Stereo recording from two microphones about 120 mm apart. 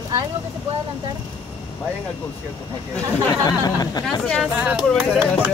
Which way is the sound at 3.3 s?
35° left (ahead or behind).